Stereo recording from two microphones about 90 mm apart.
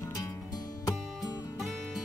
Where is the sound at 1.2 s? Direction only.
Centre (ahead or behind).